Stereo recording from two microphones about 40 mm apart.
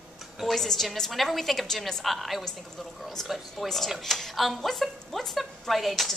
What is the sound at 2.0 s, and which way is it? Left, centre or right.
Speech, centre.